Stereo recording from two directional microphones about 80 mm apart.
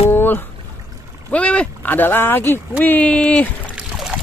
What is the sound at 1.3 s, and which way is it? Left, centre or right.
Speech, centre.